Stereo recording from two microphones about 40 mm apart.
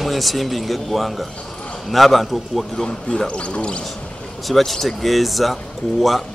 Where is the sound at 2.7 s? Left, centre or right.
Centre.